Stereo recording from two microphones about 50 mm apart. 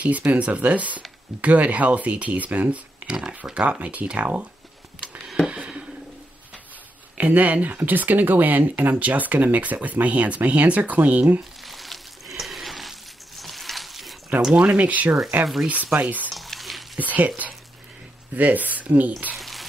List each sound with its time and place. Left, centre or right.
0.0 s speech: right
3.1 s speech: centre
5.5 s a sound: right
7.2 s speech: right
11.6 s a sound: centre
14.5 s speech: right
16.3 s a sound: centre
17.0 s speech: right
18.3 s speech: right
19.3 s frying: centre